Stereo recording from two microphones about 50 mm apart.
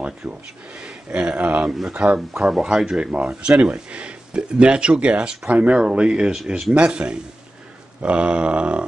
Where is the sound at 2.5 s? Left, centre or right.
Centre.